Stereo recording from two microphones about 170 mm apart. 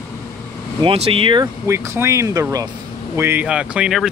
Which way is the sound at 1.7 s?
15° right (ahead or behind).